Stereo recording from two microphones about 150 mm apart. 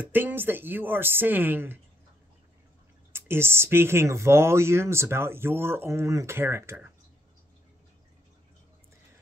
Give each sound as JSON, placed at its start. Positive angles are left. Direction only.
{"t": 0.0, "sound": "speech", "side_deg": -15}
{"t": 3.1, "sound": "speech", "side_deg": -15}